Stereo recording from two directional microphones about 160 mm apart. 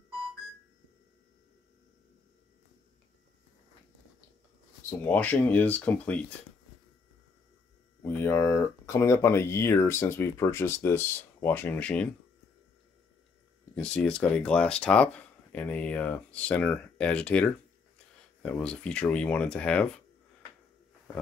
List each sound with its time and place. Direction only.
4.8 s speech: 10° left (ahead or behind)
8.1 s speech: 15° left (ahead or behind)
13.7 s speech: 5° left (ahead or behind)